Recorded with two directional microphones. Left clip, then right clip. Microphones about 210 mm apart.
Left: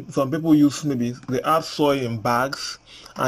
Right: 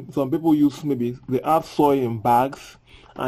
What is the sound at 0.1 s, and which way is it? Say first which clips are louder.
Speech: left 1 dB; 25° right (ahead or behind).